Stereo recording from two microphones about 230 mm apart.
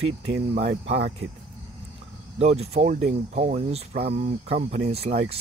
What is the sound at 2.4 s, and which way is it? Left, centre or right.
Speech, right.